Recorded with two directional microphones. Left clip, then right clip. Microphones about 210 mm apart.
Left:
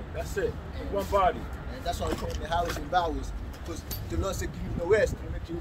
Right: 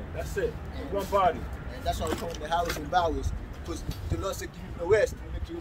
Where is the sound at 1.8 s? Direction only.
10° right (ahead or behind).